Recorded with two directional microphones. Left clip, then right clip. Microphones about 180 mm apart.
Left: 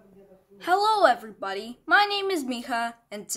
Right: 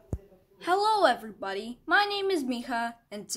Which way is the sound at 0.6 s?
5° left (ahead or behind).